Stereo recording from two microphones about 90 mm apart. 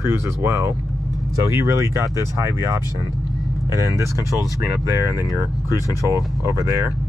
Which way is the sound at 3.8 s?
35° right (ahead or behind).